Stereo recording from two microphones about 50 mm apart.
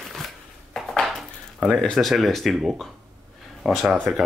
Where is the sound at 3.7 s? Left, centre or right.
Centre.